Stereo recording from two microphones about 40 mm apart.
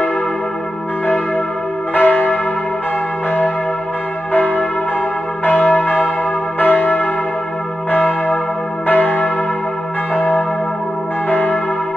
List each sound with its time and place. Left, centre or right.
2.0 s church bell: left
4.3 s church bell: left
5.7 s church bell: left
8.8 s church bell: left
11.2 s church bell: left